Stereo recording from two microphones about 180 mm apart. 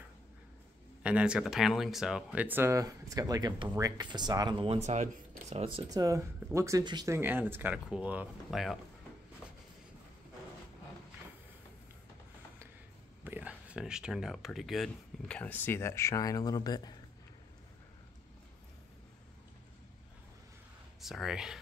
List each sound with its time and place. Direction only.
1.0 s speech: 5° right (ahead or behind); by 5.9 s 35° right (ahead or behind)
5.9 s speech: 20° right (ahead or behind)
7.2 s speech: 10° right (ahead or behind)
13.2 s speech: 10° right (ahead or behind); by 16.9 s 20° left (ahead or behind)
21.0 s speech: centre (ahead or behind)